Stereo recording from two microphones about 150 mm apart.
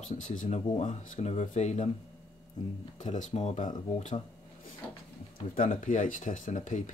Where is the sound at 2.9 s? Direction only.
55° left (ahead or behind).